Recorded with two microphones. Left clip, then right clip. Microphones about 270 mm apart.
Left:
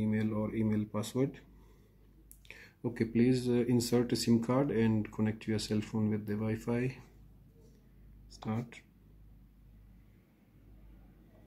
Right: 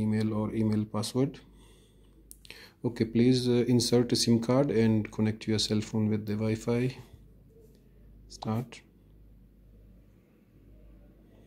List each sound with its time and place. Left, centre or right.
0.0 s a sound: centre
2.4 s speech: centre
8.4 s speech: centre